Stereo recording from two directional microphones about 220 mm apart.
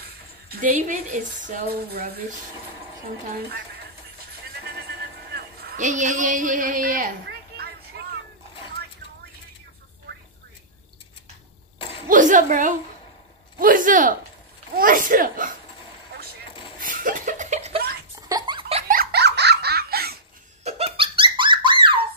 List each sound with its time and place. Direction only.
0.0 s dishes: 40° right (ahead or behind)
1.4 s speech: 45° right (ahead or behind)
3.3 s speech: 45° right (ahead or behind)
5.3 s a sound: 45° right (ahead or behind)
11.8 s a sound: 25° left (ahead or behind)
12.1 s speech: 35° right (ahead or behind)
16.8 s laughter: 35° right (ahead or behind)
18.3 s giggle: 20° right (ahead or behind)
18.9 s giggle: 50° right (ahead or behind)
20.6 s laughter: 25° right (ahead or behind)